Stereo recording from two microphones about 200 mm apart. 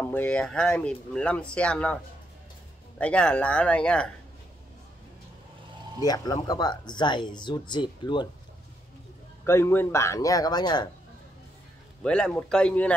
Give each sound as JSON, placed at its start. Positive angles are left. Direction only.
{"t": 0.0, "sound": "speech", "side_deg": 10}
{"t": 3.0, "sound": "speech", "side_deg": 5}
{"t": 6.0, "sound": "speech", "side_deg": 20}
{"t": 9.5, "sound": "speech", "side_deg": 10}
{"t": 12.0, "sound": "speech", "side_deg": 5}